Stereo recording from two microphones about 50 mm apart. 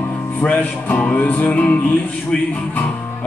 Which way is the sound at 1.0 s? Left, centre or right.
Left.